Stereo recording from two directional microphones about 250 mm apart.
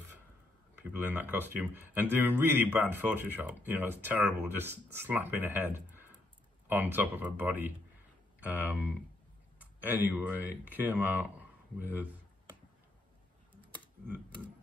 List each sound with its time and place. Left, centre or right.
0.9 s speech: centre
13.6 s typing: centre